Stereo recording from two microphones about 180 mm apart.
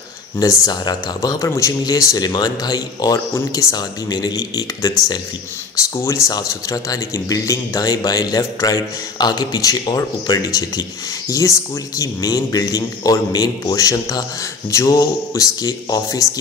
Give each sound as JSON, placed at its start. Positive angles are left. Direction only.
{"t": 0.4, "sound": "speech", "side_deg": 20}
{"t": 5.9, "sound": "speech", "side_deg": 15}